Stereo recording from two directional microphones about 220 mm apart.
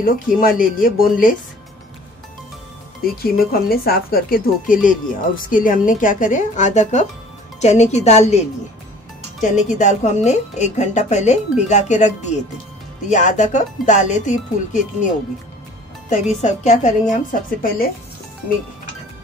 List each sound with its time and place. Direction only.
0.6 s speech: 40° left (ahead or behind)
3.2 s a woman's voice: 45° left (ahead or behind)